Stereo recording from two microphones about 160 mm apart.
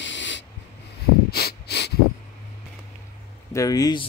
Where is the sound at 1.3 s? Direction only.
90° left.